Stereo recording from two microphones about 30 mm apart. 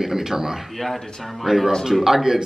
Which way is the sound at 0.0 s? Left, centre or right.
Centre.